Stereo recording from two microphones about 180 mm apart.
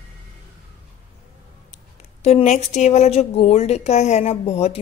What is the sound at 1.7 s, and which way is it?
Speech, 35° left (ahead or behind).